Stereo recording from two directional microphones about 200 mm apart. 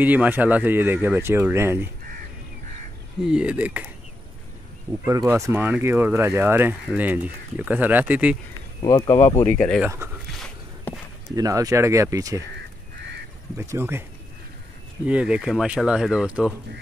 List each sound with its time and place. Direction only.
0.0 s speech: 10° right (ahead or behind)
3.3 s speech: 5° right (ahead or behind)
5.0 s speech: 15° right (ahead or behind)
8.8 s speech: 20° left (ahead or behind)
11.3 s speech: 15° right (ahead or behind)
13.6 s speech: 10° right (ahead or behind)
15.0 s speech: 5° right (ahead or behind)